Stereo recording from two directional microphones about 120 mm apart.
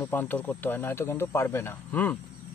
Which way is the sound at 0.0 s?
15° left (ahead or behind).